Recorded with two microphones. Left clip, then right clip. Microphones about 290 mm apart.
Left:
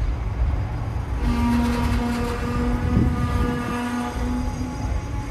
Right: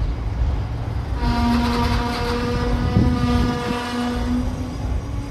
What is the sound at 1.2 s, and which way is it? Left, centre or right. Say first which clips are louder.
Music: right 3 dB; centre.